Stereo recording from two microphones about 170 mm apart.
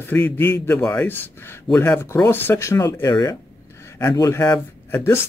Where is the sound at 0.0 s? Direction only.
10° left (ahead or behind).